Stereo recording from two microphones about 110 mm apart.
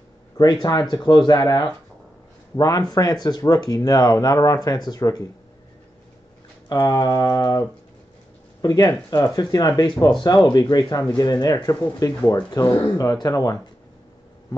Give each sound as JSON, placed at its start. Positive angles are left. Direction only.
{"t": 0.4, "sound": "speech", "side_deg": 40}
{"t": 6.7, "sound": "speech", "side_deg": 35}